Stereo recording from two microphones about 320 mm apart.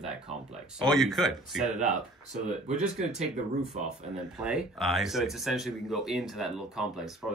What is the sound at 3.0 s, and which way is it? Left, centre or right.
Speech, right.